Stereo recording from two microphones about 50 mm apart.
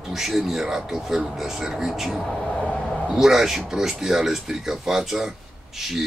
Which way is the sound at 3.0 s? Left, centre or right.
Centre.